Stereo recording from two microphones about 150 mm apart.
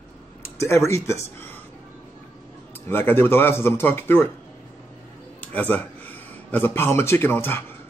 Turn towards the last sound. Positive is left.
turn(degrees=15)  # may be behind; listen again after turning